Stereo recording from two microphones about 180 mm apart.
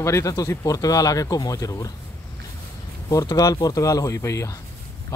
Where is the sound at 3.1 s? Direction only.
20° left (ahead or behind).